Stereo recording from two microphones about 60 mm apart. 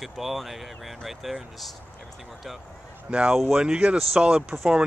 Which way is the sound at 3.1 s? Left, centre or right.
Centre.